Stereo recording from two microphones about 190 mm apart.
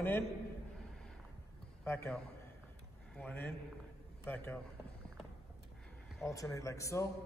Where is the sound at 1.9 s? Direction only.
15° left (ahead or behind).